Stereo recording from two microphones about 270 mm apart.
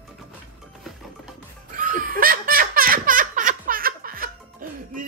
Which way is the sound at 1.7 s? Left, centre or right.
Right.